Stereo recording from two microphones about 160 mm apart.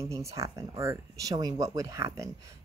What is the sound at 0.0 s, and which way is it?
Speech, 20° right (ahead or behind).